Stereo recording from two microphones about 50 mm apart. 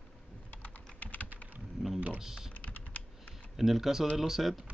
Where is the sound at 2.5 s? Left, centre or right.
Left.